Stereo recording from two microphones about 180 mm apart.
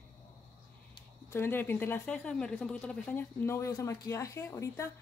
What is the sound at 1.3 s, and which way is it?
Speech, 10° left (ahead or behind).